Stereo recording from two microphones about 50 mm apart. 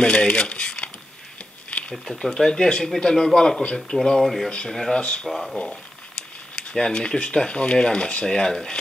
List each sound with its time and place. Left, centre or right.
0.0 s a sound: centre
1.9 s speech: centre
4.2 s speech: centre
5.0 s speech: left
5.3 s speech: centre
6.5 s speech: centre